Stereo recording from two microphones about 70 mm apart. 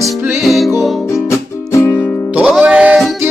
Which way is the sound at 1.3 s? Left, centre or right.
Left.